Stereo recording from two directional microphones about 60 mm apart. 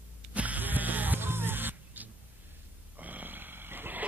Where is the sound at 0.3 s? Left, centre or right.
Right.